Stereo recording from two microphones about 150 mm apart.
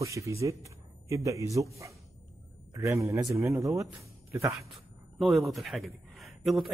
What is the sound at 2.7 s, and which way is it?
Speech, 20° right (ahead or behind).